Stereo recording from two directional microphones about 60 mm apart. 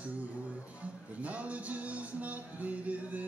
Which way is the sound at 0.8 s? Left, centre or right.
Right.